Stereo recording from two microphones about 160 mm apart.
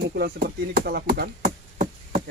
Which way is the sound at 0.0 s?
85° right.